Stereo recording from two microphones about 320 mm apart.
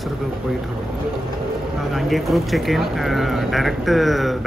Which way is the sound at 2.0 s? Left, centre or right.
Centre.